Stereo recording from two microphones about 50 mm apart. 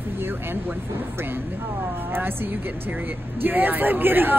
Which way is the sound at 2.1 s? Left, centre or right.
Right.